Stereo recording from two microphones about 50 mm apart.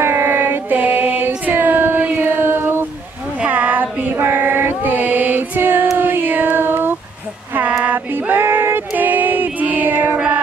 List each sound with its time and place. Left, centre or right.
0.0 s child singing: right
3.4 s a sound: right
4.1 s female singing: right
8.9 s female singing: right
10.1 s music: right